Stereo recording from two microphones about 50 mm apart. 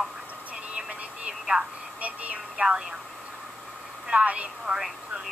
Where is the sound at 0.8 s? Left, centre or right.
Right.